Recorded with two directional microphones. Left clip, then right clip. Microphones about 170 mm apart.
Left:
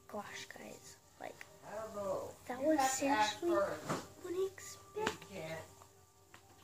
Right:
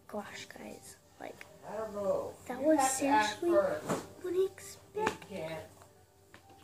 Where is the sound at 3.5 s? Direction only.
45° right (ahead or behind).